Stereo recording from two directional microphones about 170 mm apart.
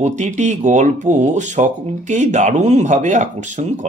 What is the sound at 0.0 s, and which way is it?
Speech, 45° right (ahead or behind).